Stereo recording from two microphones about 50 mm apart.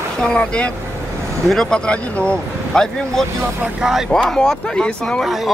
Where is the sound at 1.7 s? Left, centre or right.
Left.